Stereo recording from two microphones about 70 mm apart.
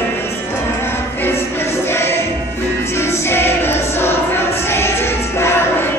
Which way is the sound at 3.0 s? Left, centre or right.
Left.